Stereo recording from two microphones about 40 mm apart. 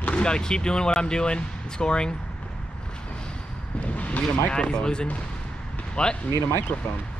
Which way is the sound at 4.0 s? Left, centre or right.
Left.